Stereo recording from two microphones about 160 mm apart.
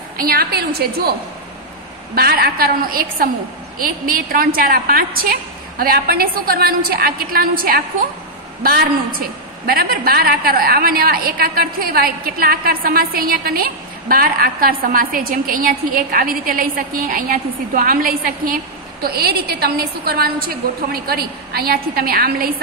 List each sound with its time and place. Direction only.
0.2 s a woman's voice: 65° right (ahead or behind)
2.1 s a woman's voice: 75° right (ahead or behind)
9.7 s a woman's voice: 70° right (ahead or behind)